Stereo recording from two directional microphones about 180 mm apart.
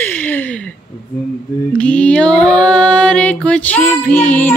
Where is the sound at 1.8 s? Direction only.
5° left (ahead or behind).